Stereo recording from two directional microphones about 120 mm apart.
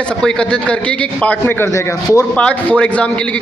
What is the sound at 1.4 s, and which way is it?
Speech, 20° left (ahead or behind).